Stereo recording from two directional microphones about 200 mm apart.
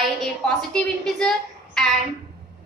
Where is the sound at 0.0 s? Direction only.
Centre (ahead or behind).